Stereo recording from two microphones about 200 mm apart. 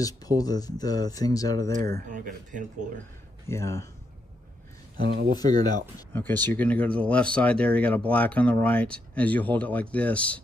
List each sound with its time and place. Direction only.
0.0 s speech: 20° left (ahead or behind)
2.0 s speech: 40° right (ahead or behind)
3.4 s speech: 15° left (ahead or behind)
4.9 s speech: 50° right (ahead or behind)
5.4 s speech: 20° left (ahead or behind)
5.9 s speech: 10° left (ahead or behind)